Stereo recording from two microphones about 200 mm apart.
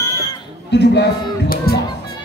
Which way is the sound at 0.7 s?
60° left (ahead or behind).